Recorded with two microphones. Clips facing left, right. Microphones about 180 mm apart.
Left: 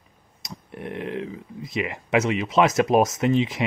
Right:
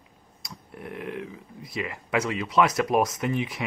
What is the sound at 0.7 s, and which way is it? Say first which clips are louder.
Speech: left 5 dB; 90° left.